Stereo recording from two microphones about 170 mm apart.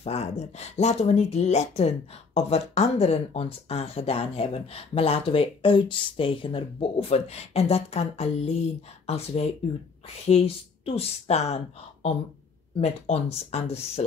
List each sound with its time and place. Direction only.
0.0 s speech: 40° left (ahead or behind)